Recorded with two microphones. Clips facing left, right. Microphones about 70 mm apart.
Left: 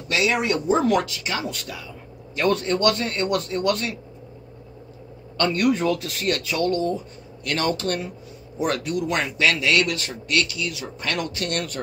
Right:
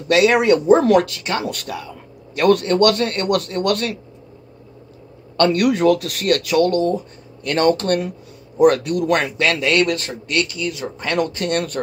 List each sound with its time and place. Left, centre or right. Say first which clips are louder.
0.1 s a man's voice: right 8 dB; right
5.4 s a man's voice: right 5 dB; right
7.4 s a man's voice: right 7 dB; right